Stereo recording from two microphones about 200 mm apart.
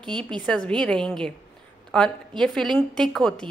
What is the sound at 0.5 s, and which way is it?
A woman's voice, 5° left (ahead or behind).